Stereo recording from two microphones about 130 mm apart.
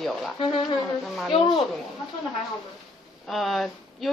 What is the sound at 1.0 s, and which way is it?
Speech, centre (ahead or behind).